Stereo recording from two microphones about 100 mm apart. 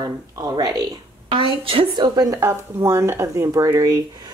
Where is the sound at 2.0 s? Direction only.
40° right (ahead or behind).